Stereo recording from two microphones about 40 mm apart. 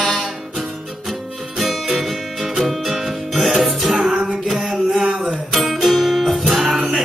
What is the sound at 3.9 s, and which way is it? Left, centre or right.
Music, right.